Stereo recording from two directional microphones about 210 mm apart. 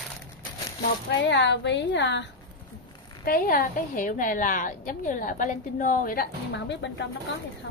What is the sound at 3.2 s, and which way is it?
A woman's voice, 45° left (ahead or behind).